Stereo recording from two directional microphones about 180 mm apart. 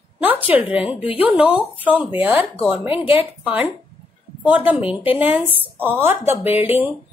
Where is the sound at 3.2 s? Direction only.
10° right (ahead or behind).